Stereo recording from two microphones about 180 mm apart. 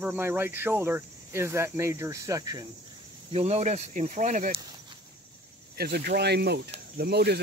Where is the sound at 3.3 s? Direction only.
35° right (ahead or behind).